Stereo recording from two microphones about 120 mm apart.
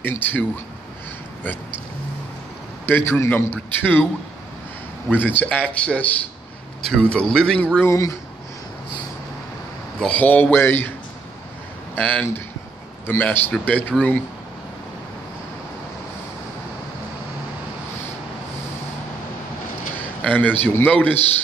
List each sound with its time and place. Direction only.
0.0 s a man's voice: 15° left (ahead or behind)
2.9 s a man's voice: 20° left (ahead or behind)
5.1 s a man's voice: 15° left (ahead or behind)
7.8 s a man's voice: 25° left (ahead or behind)
9.9 s a man's voice: 10° left (ahead or behind)
12.0 s a man's voice: 10° left (ahead or behind)
13.9 s speech: centre (ahead or behind)
20.2 s a man's voice: 10° left (ahead or behind)